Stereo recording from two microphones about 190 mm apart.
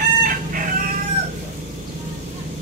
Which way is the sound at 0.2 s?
45° right (ahead or behind).